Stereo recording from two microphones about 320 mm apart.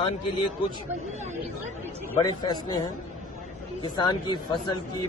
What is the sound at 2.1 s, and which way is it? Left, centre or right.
Speech, centre.